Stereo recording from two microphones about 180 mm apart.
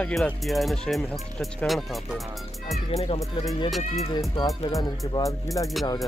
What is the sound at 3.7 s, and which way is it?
Speech, centre (ahead or behind).